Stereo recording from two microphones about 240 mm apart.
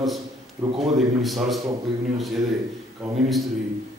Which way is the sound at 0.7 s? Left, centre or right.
Right.